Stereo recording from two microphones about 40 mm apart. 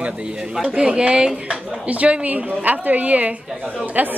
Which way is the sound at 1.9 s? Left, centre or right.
Right.